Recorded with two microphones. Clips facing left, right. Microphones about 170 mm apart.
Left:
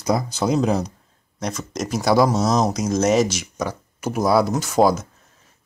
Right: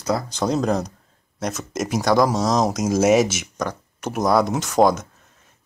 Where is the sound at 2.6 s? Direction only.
5° right (ahead or behind).